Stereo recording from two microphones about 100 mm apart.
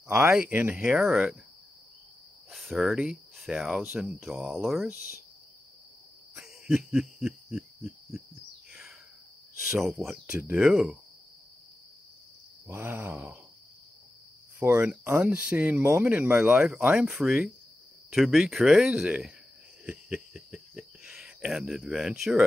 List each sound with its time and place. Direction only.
0.3 s speech: 10° right (ahead or behind)
2.5 s speech: centre (ahead or behind)
6.4 s snicker: 10° right (ahead or behind)
9.9 s speech: 10° right (ahead or behind)
12.6 s speech: 20° right (ahead or behind)
14.6 s speech: 20° right (ahead or behind)
19.8 s a sound: 10° right (ahead or behind)